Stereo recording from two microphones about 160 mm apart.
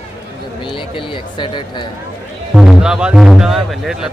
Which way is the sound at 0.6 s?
30° left (ahead or behind).